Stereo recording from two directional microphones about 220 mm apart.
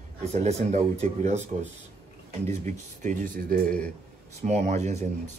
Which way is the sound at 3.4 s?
40° right (ahead or behind).